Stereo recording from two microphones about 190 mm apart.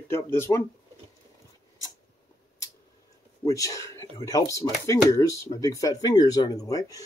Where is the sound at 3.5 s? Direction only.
15° left (ahead or behind).